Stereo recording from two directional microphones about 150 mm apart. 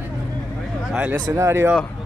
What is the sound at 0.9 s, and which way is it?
Speech, 10° right (ahead or behind).